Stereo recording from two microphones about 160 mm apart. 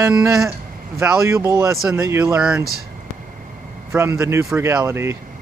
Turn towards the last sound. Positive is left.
turn(degrees=-15)  # may be behind; listen again after turning